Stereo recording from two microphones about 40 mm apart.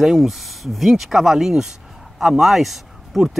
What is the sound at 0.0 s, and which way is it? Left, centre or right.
Speech, centre.